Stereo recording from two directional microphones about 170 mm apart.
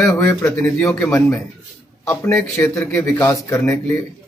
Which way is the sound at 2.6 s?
15° left (ahead or behind).